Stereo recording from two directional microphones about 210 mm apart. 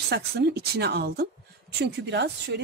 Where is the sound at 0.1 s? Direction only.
50° right (ahead or behind).